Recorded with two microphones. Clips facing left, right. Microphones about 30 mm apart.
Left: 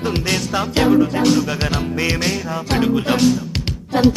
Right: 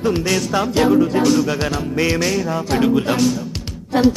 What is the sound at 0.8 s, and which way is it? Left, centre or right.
Music, centre.